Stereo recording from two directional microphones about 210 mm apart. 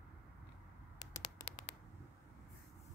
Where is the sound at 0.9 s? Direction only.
20° left (ahead or behind).